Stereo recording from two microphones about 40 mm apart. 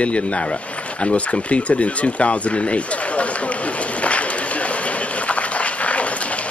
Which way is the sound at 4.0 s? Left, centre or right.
Left.